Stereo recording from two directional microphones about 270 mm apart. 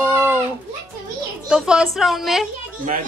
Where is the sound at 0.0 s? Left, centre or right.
Centre.